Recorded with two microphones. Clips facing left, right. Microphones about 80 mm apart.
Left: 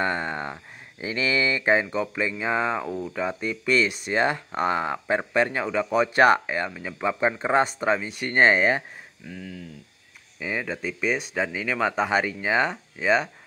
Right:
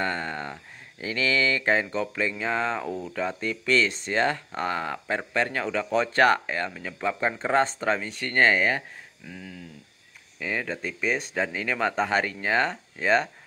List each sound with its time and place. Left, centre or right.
0.0 s speech: centre
10.4 s speech: centre